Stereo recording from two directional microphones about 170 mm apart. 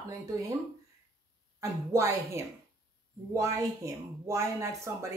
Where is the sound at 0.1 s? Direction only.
20° right (ahead or behind).